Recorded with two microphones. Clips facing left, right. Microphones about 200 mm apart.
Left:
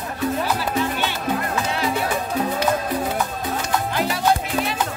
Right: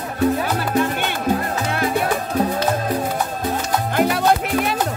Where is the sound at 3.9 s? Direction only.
55° right (ahead or behind).